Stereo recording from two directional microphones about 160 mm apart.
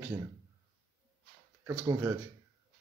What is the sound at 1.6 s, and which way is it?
Speech, 15° right (ahead or behind).